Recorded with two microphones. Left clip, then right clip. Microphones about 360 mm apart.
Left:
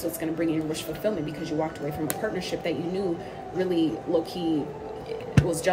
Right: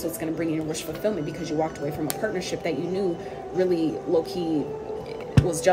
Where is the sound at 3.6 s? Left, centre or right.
Centre.